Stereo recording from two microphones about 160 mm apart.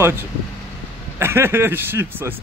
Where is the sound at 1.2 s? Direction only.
15° right (ahead or behind).